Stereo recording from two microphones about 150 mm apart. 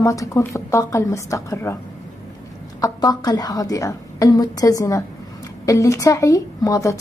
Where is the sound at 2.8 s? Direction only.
25° left (ahead or behind).